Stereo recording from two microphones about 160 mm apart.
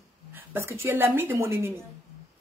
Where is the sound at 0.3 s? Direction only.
10° right (ahead or behind).